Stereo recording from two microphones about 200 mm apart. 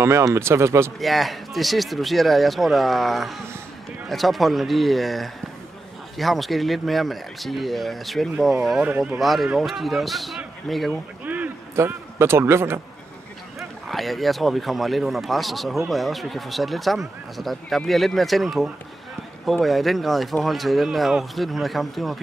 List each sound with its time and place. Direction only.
0.0 s speech: 15° right (ahead or behind)
0.9 s a man's voice: centre (ahead or behind)
13.6 s speech: centre (ahead or behind)